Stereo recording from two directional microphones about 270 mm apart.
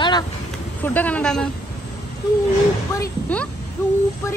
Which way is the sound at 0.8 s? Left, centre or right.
Centre.